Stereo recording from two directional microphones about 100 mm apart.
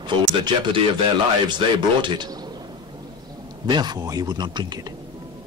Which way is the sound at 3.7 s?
45° right (ahead or behind).